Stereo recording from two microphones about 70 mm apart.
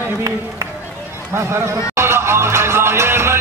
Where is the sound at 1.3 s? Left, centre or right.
Right.